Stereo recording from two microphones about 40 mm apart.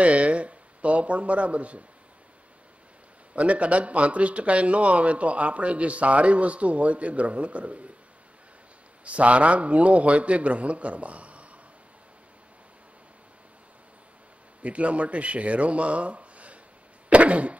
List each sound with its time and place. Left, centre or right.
0.0 s speech: right
3.3 s a man's voice: right
9.0 s a man's voice: right
14.6 s a man's voice: right